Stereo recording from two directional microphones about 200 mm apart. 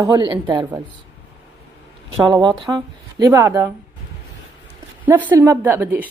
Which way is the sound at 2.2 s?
20° right (ahead or behind).